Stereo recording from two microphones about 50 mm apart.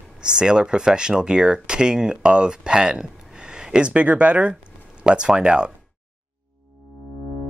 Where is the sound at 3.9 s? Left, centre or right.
Right.